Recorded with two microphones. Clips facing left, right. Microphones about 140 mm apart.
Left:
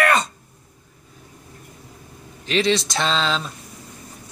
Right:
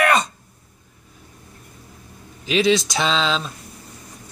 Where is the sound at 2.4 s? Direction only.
5° right (ahead or behind).